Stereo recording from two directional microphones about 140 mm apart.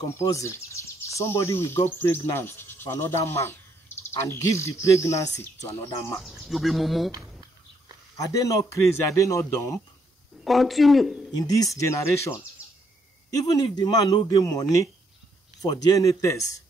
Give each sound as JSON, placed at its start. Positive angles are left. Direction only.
{"t": 0.2, "sound": "speech", "side_deg": 20}
{"t": 6.2, "sound": "speech", "side_deg": 0}
{"t": 8.2, "sound": "speech", "side_deg": 25}
{"t": 10.4, "sound": "speech", "side_deg": 0}
{"t": 11.3, "sound": "speech", "side_deg": 25}
{"t": 13.5, "sound": "speech", "side_deg": 30}